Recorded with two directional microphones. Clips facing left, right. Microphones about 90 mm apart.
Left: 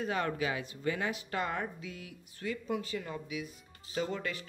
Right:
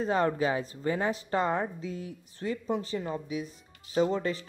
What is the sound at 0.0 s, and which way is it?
Speech, 35° right (ahead or behind).